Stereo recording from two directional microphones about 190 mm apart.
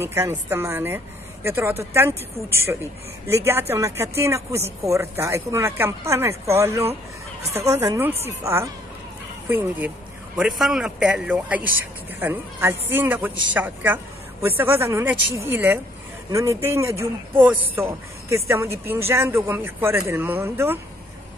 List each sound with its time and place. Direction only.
0.0 s a man's voice: 15° right (ahead or behind)